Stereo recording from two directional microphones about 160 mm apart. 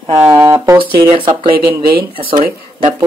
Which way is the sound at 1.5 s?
70° right (ahead or behind).